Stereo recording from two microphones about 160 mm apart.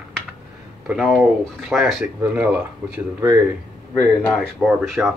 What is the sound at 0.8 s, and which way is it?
Speech, 5° right (ahead or behind).